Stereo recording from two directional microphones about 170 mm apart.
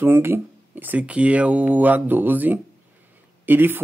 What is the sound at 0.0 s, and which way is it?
Speech, 10° right (ahead or behind).